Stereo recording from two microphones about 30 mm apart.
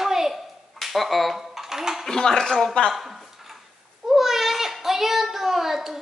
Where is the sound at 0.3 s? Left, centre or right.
Centre.